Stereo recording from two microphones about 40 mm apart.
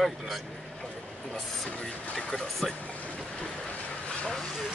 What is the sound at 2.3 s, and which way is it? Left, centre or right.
Speech, centre.